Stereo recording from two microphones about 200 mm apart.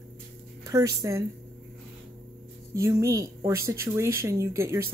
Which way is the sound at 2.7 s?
15° right (ahead or behind).